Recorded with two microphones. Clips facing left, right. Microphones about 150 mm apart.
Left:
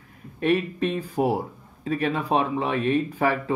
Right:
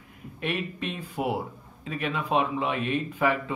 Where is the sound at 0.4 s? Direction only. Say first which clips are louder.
Left 9 dB; 40° left (ahead or behind).